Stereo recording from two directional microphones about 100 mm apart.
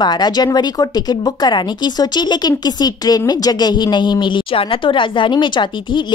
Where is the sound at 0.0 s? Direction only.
45° left (ahead or behind).